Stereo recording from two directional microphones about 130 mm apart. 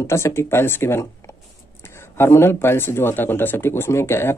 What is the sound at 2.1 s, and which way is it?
Speech, 20° left (ahead or behind).